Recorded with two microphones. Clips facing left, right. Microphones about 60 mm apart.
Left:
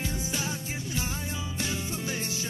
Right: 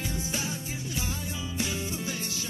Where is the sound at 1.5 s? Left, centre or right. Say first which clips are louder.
Right 2 dB; left.